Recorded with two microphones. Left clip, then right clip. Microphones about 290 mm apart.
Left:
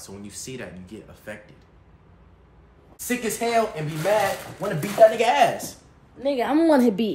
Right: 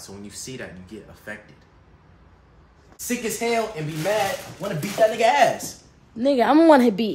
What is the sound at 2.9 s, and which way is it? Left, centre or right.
Speech, centre.